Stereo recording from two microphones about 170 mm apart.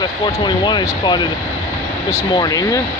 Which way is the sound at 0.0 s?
25° left (ahead or behind).